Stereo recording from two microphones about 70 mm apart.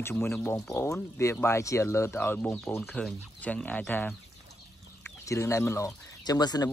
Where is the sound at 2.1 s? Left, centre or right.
Left.